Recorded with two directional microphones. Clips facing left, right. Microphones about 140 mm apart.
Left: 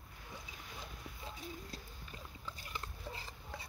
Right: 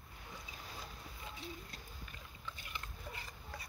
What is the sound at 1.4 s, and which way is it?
Dog, 35° left (ahead or behind).